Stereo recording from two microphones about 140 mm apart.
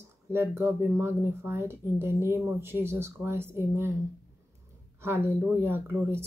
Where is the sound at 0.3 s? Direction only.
15° right (ahead or behind).